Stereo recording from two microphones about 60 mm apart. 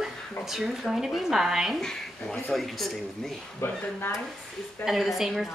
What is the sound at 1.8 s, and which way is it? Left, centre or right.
Speech, centre.